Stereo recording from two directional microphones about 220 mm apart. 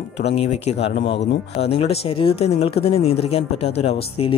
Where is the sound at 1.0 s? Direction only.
55° left (ahead or behind).